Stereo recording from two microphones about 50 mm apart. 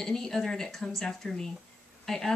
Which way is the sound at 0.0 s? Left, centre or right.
Centre.